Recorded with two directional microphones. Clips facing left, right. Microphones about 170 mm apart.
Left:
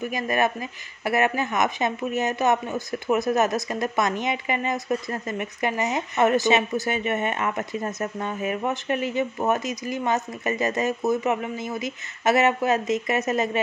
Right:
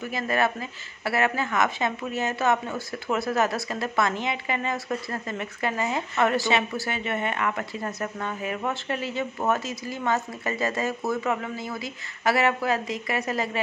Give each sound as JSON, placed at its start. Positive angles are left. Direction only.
{"t": 0.0, "sound": "speech", "side_deg": 15}